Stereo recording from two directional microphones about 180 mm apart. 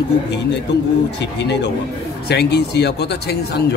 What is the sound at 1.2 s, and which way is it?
Speech, 70° left (ahead or behind).